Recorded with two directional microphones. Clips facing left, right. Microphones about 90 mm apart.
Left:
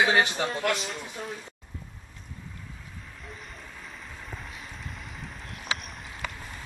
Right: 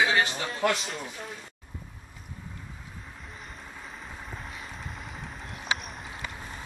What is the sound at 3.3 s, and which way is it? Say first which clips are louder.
Vehicle: right 1 dB; centre (ahead or behind).